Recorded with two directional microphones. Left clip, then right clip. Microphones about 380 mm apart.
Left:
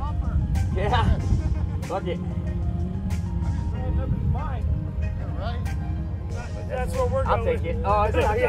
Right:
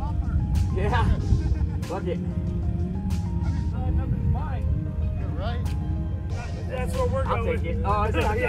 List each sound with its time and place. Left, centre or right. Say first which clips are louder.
0.8 s music: left 3 dB; left
1.9 s speech: left 2 dB; centre
6.7 s speech: left 2 dB; left